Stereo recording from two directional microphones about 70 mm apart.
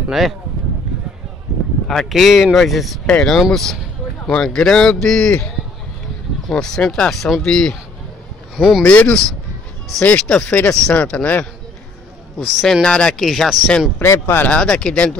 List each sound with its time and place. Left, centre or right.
0.1 s speech: centre
1.5 s a sound: centre
1.9 s speech: centre
6.5 s speech: centre
8.5 s speech: centre
8.8 s speech: centre
12.8 s speech: centre
13.2 s speech: centre
13.9 s speech: left
14.5 s speech: centre